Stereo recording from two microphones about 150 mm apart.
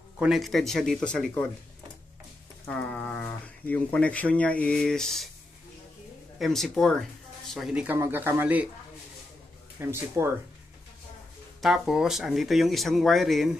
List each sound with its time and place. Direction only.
0.2 s speech: centre (ahead or behind)
2.6 s speech: 10° left (ahead or behind)
6.4 s speech: centre (ahead or behind)
9.8 s speech: 15° right (ahead or behind)
11.6 s speech: 5° right (ahead or behind)